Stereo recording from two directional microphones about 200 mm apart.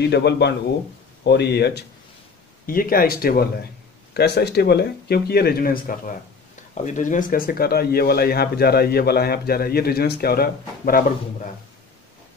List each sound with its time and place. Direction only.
0.1 s speech: 55° left (ahead or behind)